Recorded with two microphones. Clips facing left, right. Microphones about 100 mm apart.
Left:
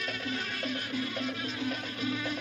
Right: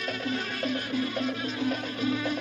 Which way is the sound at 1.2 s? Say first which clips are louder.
Right 5 dB; 45° right (ahead or behind).